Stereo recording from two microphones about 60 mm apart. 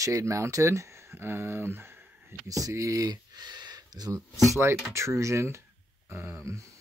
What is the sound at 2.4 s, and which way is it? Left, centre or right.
Speech, right.